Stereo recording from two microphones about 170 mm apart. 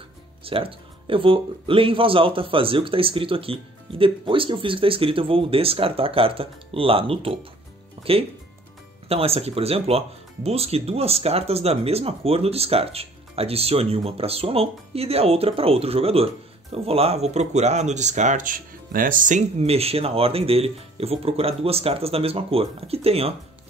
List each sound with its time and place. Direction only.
0.4 s speech: 30° right (ahead or behind)